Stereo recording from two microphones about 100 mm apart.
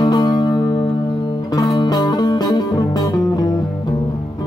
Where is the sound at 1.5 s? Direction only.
40° left (ahead or behind).